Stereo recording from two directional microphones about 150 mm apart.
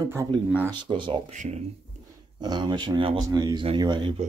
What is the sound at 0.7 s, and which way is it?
Speech, 35° right (ahead or behind).